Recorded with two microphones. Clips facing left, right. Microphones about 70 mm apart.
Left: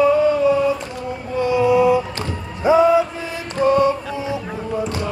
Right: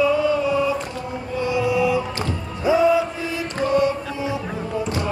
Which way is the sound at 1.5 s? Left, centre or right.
Left.